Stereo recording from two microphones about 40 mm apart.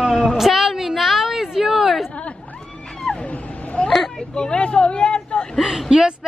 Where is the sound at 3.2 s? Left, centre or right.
Left.